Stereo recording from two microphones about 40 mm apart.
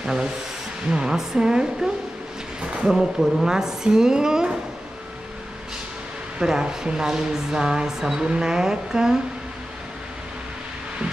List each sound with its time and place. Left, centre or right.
0.0 s speech: centre
6.4 s speech: centre